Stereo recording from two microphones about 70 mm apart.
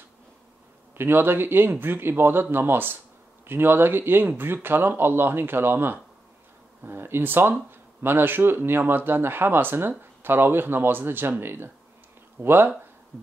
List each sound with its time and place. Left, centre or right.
0.9 s speech: right